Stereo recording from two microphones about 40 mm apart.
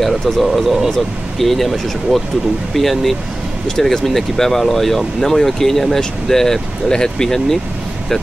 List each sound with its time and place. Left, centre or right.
0.0 s speech: centre